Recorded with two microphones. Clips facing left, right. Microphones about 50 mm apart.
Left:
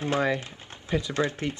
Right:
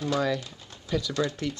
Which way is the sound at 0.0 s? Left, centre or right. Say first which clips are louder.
Left 1 dB; left.